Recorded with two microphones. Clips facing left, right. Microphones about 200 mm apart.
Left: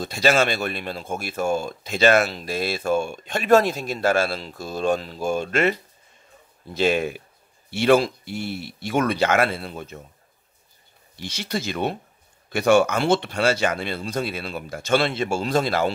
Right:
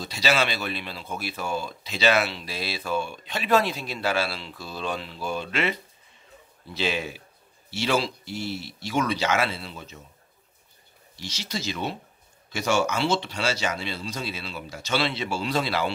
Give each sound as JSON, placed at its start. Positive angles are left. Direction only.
{"t": 0.0, "sound": "speech", "side_deg": 50}
{"t": 11.1, "sound": "speech", "side_deg": 55}